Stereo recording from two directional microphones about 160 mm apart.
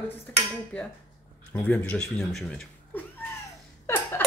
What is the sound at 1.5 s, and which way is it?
Speech, 10° left (ahead or behind).